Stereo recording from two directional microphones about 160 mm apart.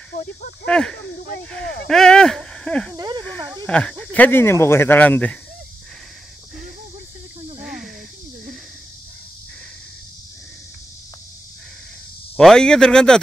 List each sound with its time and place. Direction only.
0.7 s speech: 5° left (ahead or behind)
3.0 s speech: 30° right (ahead or behind)
3.6 s speech: 5° left (ahead or behind)
7.6 s snake: 5° right (ahead or behind)
12.4 s speech: 5° left (ahead or behind)